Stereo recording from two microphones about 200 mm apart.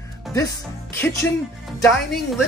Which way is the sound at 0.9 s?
10° left (ahead or behind).